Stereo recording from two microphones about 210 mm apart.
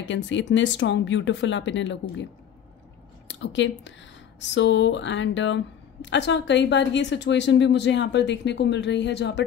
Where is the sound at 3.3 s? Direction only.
60° left (ahead or behind).